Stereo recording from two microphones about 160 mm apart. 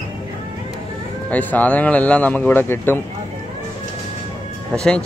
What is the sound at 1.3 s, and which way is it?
Speech, 10° left (ahead or behind).